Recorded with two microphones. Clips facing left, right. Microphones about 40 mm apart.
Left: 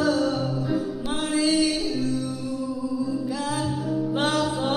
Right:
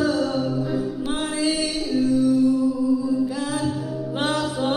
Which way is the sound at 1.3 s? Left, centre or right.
Centre.